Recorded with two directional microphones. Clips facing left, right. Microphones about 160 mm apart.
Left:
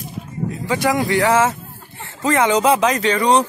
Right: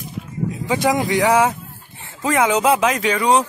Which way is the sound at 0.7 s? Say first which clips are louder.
Even; 20° right (ahead or behind).